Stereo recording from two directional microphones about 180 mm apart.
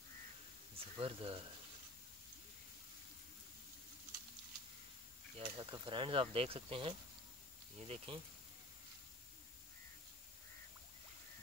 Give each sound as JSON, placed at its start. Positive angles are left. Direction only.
{"t": 0.7, "sound": "speech", "side_deg": -30}
{"t": 5.4, "sound": "speech", "side_deg": -25}